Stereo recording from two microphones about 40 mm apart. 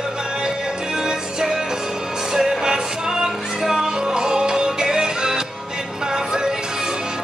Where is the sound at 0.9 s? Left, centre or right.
Centre.